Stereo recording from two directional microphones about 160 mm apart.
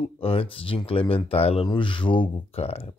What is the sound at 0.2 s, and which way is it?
Speech, 35° left (ahead or behind).